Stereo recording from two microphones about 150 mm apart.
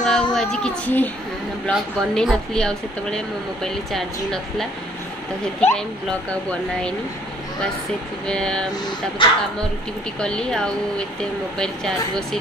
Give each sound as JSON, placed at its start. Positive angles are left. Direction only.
{"t": 0.0, "sound": "speech", "side_deg": 5}
{"t": 8.3, "sound": "speech", "side_deg": 5}
{"t": 9.2, "sound": "speech", "side_deg": 35}
{"t": 10.2, "sound": "speech", "side_deg": 5}